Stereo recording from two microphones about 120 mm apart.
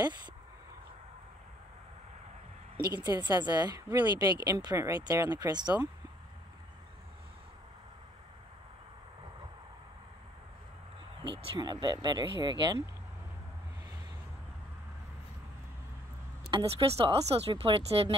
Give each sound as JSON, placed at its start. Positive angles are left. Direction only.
{"t": 3.0, "sound": "a woman's voice", "side_deg": -35}
{"t": 11.2, "sound": "a woman's voice", "side_deg": -40}
{"t": 16.5, "sound": "speech", "side_deg": -40}